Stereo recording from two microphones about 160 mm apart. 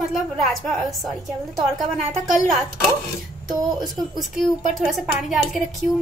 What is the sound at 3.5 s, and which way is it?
Speech, 25° right (ahead or behind).